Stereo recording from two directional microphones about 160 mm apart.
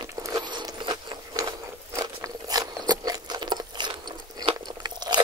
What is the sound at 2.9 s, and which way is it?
Crunch, 25° right (ahead or behind).